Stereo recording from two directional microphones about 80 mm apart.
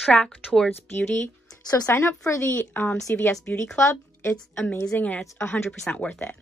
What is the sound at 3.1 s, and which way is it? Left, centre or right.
Speech, left.